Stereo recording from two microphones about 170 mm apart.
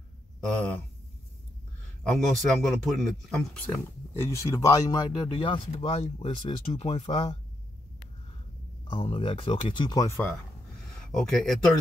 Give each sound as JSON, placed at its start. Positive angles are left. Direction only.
{"t": 2.0, "sound": "speech", "side_deg": 0}
{"t": 4.1, "sound": "speech", "side_deg": 15}
{"t": 8.9, "sound": "speech", "side_deg": 35}
{"t": 11.0, "sound": "speech", "side_deg": 5}